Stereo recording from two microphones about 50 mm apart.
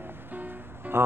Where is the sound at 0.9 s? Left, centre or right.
Right.